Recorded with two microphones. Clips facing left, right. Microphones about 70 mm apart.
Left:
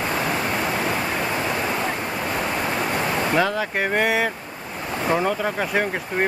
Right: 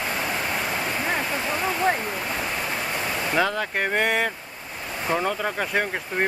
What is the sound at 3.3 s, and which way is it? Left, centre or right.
Speech, centre.